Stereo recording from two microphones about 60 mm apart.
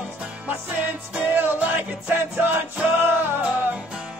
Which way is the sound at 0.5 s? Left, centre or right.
Right.